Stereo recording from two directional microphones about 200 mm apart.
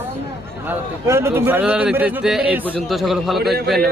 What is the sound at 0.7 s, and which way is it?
Speech, 15° right (ahead or behind).